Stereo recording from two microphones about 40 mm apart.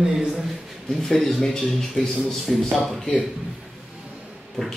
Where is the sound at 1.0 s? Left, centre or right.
Centre.